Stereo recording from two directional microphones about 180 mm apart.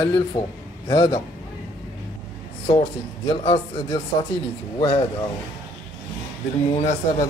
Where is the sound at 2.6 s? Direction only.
30° left (ahead or behind).